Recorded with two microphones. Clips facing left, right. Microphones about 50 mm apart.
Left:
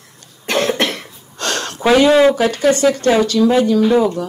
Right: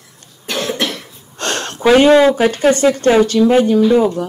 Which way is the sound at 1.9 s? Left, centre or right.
Right.